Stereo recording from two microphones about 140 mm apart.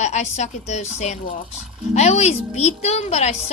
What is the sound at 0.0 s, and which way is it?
A woman's voice, 55° left (ahead or behind).